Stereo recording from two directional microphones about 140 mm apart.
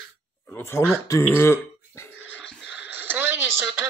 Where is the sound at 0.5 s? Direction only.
15° left (ahead or behind).